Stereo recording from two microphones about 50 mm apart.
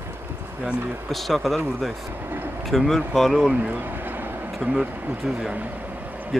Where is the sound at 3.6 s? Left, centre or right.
Right.